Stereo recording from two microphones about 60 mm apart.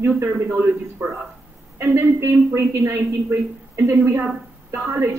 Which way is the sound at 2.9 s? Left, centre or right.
Right.